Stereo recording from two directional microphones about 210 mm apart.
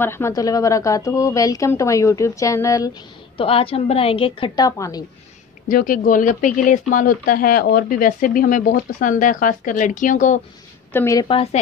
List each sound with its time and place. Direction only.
0.0 s a woman's voice: 10° left (ahead or behind)
5.7 s speech: 40° left (ahead or behind)
10.9 s a woman's voice: 10° left (ahead or behind)